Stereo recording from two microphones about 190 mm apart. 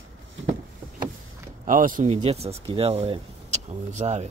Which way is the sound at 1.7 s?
45° right (ahead or behind).